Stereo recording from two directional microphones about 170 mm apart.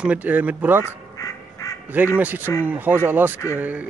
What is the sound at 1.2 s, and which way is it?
Quack, 20° left (ahead or behind).